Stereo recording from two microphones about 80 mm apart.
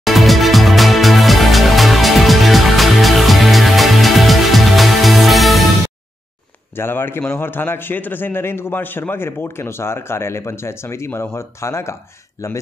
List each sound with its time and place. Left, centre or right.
0.0 s music: centre
6.7 s a man's voice: left